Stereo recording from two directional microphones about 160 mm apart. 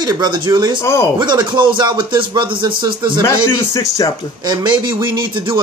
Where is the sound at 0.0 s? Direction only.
25° right (ahead or behind).